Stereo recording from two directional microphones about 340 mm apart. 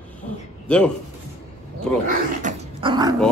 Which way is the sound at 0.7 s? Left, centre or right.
Centre.